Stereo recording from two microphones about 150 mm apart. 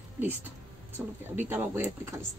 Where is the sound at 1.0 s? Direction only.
5° right (ahead or behind).